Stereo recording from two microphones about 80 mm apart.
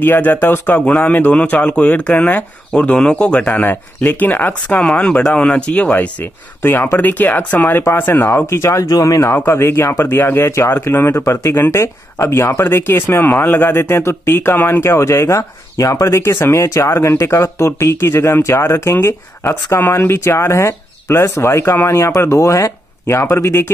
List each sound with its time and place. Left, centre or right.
0.0 s speech: left
9.3 s speech: left